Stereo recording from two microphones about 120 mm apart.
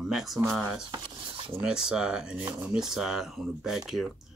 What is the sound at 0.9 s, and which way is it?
Dishes, 40° right (ahead or behind).